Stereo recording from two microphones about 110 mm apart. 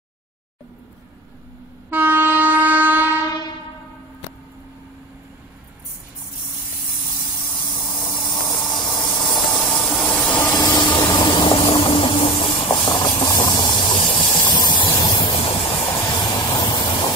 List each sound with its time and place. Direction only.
1.9 s train: 20° right (ahead or behind)
7.9 s spray: 40° left (ahead or behind)
9.5 s steam: 10° left (ahead or behind)
10.0 s a sound: 15° left (ahead or behind)
10.5 s a sound: 40° left (ahead or behind)
14.4 s hiss: 40° left (ahead or behind)
15.1 s train: 55° left (ahead or behind)
16.1 s vehicle: 40° left (ahead or behind)
16.4 s steam: 35° left (ahead or behind)